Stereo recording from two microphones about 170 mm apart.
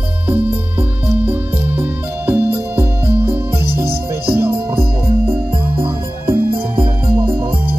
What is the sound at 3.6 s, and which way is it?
Music, 65° right (ahead or behind).